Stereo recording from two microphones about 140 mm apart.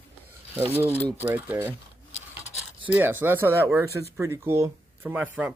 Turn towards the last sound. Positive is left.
turn(degrees=-15)  # may be behind; listen again after turning